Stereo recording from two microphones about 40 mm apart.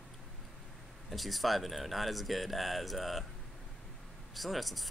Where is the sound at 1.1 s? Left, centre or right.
Centre.